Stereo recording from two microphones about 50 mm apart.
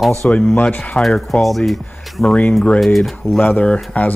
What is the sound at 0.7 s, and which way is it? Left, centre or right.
Speech, left.